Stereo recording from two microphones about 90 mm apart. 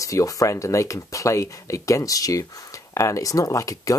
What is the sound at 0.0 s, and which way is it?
Speech, 40° left (ahead or behind).